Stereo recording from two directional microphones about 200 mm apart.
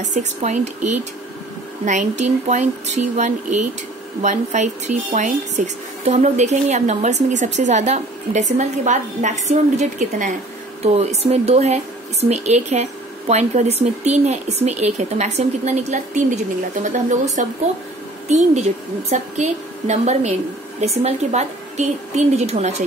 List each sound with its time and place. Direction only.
0.0 s a woman's voice: 35° right (ahead or behind)
1.9 s a woman's voice: 35° right (ahead or behind)
17.4 s a woman's voice: 40° right (ahead or behind)